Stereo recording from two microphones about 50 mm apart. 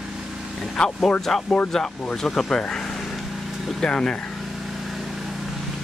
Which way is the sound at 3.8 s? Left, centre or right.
Centre.